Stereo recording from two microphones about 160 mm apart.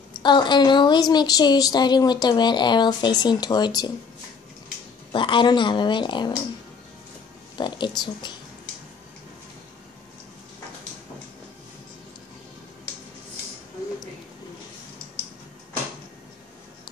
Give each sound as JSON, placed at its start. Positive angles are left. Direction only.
{"t": 0.2, "sound": "speech", "side_deg": 30}
{"t": 5.1, "sound": "speech", "side_deg": 30}
{"t": 7.5, "sound": "speech", "side_deg": 30}